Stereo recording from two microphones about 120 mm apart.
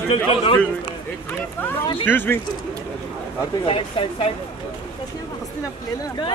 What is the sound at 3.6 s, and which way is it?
Speech, 50° left (ahead or behind).